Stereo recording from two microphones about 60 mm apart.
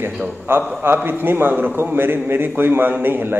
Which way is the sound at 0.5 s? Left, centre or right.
Right.